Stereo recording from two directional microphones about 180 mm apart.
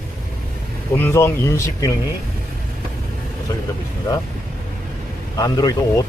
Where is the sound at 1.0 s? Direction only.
15° left (ahead or behind).